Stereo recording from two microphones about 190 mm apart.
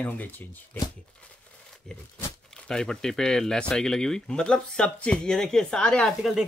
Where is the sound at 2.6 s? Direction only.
5° left (ahead or behind).